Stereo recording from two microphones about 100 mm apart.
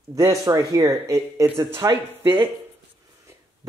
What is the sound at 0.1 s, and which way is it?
Speech, 35° right (ahead or behind).